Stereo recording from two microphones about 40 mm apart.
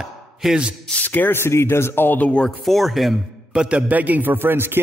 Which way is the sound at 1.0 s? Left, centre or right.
Left.